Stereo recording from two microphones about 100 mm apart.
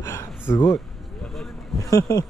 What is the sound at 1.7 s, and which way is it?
Speech, 35° left (ahead or behind).